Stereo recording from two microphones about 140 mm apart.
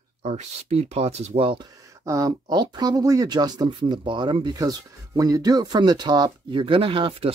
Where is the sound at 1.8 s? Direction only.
25° right (ahead or behind).